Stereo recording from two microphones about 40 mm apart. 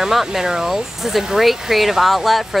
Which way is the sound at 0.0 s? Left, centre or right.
Centre.